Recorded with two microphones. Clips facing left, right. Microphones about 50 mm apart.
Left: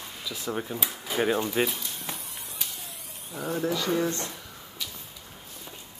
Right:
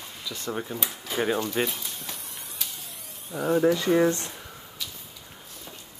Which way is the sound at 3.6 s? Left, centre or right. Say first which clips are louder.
Right 5 dB; right.